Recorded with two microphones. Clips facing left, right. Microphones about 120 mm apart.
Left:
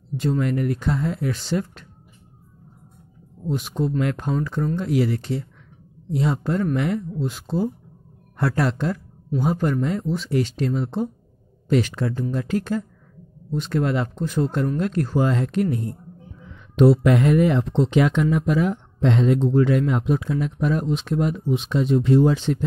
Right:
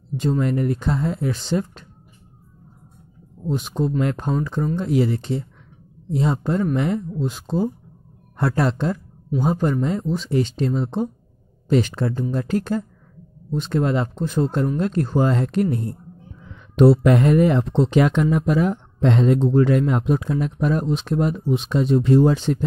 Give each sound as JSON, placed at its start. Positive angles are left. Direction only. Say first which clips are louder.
{"t": 0.2, "sound": "speech", "louder": "right 1 dB", "side_deg": -25}
{"t": 3.4, "sound": "speech", "louder": "right 1 dB", "side_deg": -25}
{"t": 13.5, "sound": "speech", "louder": "right 2 dB", "side_deg": -25}